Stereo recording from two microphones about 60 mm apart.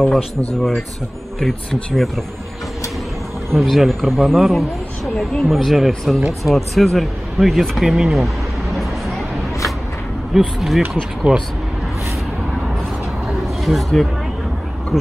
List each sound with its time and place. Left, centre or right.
0.6 s speech: centre
3.5 s speech: centre
10.3 s speech: centre
11.3 s speech: centre
13.7 s speech: centre